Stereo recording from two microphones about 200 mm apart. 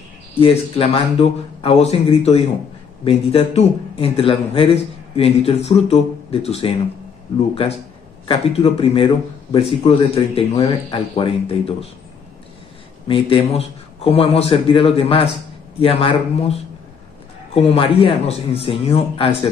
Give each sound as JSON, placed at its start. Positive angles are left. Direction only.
{"t": 0.4, "sound": "speech", "side_deg": 30}
{"t": 13.1, "sound": "speech", "side_deg": 30}
{"t": 17.6, "sound": "speech", "side_deg": 30}